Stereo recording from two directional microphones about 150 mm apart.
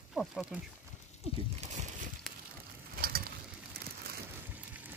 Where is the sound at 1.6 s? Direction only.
55° right (ahead or behind).